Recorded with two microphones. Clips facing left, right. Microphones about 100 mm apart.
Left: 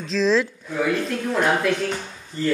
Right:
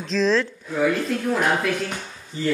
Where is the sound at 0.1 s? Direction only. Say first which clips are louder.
Left 1 dB; centre (ahead or behind).